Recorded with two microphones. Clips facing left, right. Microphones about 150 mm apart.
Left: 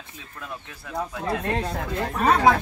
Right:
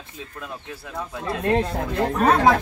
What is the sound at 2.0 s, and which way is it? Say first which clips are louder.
Speech: right 3 dB; 40° right (ahead or behind).